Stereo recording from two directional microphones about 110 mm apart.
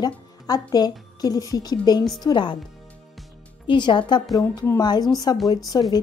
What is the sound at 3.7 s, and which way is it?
Speech, 45° left (ahead or behind).